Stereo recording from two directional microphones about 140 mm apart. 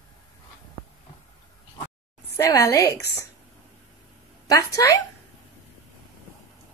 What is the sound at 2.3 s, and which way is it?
Speech, 20° left (ahead or behind).